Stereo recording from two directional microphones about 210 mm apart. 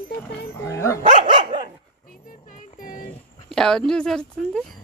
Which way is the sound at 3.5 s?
Centre (ahead or behind).